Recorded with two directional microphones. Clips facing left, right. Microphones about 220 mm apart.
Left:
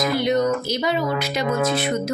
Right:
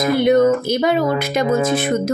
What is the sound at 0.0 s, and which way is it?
Speech, 55° right (ahead or behind).